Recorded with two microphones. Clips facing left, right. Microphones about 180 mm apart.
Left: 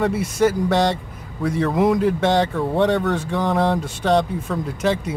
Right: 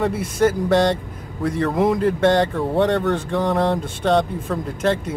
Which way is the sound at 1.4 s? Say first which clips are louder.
Even; centre (ahead or behind).